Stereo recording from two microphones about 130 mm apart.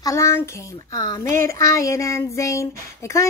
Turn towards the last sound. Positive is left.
turn(degrees=25)  # may be behind; listen again after turning